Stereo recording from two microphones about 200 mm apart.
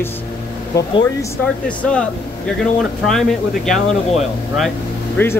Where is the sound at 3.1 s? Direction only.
Centre (ahead or behind).